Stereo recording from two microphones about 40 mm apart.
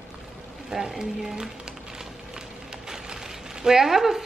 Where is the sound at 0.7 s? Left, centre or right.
Centre.